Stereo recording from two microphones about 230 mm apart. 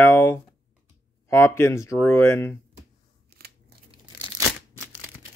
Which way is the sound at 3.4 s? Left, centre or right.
Right.